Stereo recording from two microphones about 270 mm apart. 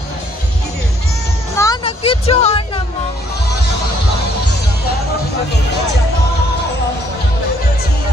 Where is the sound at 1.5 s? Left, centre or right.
Centre.